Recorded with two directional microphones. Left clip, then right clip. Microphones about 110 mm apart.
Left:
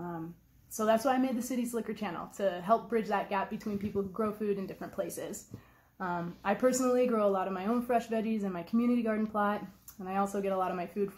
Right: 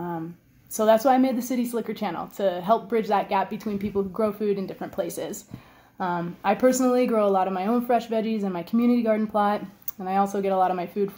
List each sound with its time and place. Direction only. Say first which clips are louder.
0.7 s a woman's voice: right 9 dB; 20° right (ahead or behind)